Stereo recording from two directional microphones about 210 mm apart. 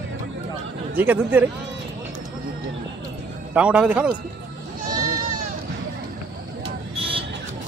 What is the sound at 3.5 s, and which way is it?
Speech, 5° right (ahead or behind).